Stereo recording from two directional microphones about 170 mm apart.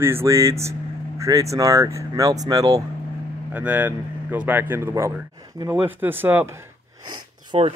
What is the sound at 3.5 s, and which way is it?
Speech, 10° right (ahead or behind).